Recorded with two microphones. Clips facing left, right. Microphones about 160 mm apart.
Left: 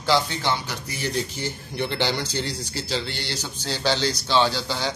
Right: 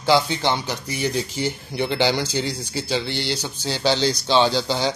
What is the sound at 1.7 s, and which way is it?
Speech, 10° right (ahead or behind).